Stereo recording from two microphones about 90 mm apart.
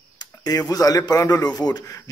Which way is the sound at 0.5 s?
40° left (ahead or behind).